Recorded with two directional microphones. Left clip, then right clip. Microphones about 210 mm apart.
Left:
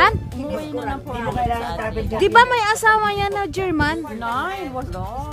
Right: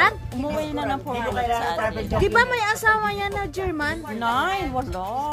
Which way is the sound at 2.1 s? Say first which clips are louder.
Left 6 dB; 30° left (ahead or behind).